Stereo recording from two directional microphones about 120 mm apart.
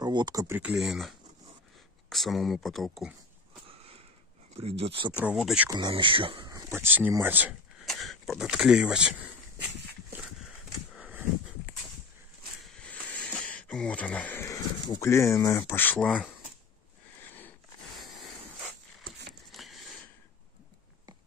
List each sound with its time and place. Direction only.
0.0 s speech: 35° right (ahead or behind)
0.6 s speech: 5° right (ahead or behind)
3.6 s sniff: 55° right (ahead or behind)
4.6 s speech: 55° right (ahead or behind)
5.2 s speech: 5° right (ahead or behind)
5.7 s speech: 40° right (ahead or behind)
6.4 s speech: 25° right (ahead or behind)
7.8 s speech: centre (ahead or behind)
11.0 s a sound: 10° right (ahead or behind)
12.6 s a sound: 10° left (ahead or behind)
14.4 s speech: 30° left (ahead or behind)
15.8 s speech: 15° left (ahead or behind)
19.5 s a sound: centre (ahead or behind)